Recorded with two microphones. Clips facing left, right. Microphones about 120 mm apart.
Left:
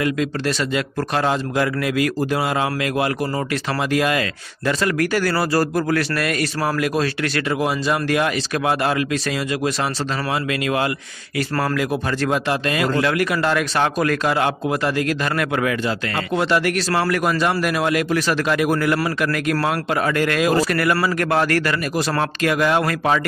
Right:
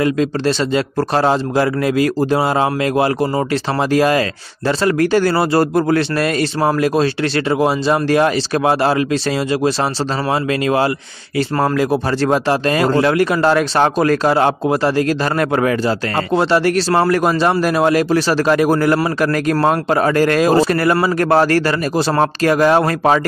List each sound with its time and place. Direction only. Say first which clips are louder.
0.0 s a man's voice: right 5 dB; 30° right (ahead or behind)
11.3 s a man's voice: right 5 dB; 25° right (ahead or behind)
12.3 s a man's voice: right 6 dB; 35° right (ahead or behind)